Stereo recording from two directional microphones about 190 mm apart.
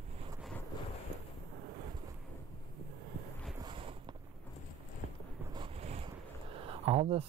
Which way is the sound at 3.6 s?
25° right (ahead or behind).